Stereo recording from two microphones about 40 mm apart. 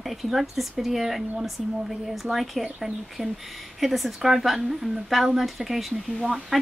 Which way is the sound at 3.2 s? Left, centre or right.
Centre.